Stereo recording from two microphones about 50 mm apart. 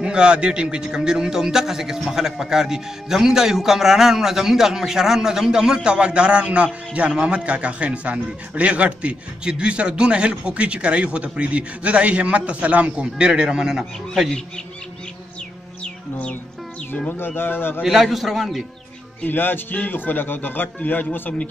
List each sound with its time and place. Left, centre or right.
0.0 s a man's voice: centre
15.8 s music: left
17.4 s speech: left
17.8 s a man's voice: centre
19.2 s speech: left